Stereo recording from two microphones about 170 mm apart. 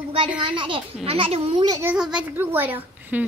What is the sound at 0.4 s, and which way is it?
A child's voice, 30° right (ahead or behind).